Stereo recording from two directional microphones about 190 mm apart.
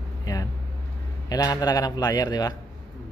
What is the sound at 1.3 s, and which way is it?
A man's voice, 20° left (ahead or behind).